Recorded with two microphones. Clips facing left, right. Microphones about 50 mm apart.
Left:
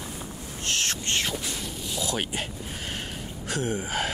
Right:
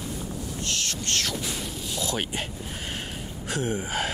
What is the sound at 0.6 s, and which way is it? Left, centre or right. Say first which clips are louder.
Owl: left 4 dB; left.